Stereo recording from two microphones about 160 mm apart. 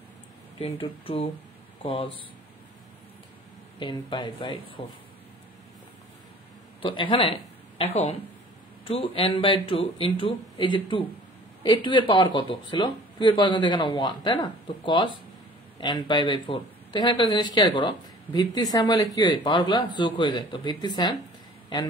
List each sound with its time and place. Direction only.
0.6 s speech: 35° left (ahead or behind)
3.8 s speech: 30° left (ahead or behind)
6.8 s speech: 30° left (ahead or behind)